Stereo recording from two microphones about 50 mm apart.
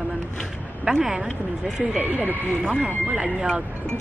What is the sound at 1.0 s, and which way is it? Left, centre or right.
Speech, centre.